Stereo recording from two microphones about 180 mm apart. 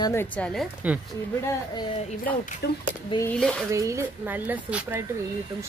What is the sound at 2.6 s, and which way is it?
Speech, 65° left (ahead or behind).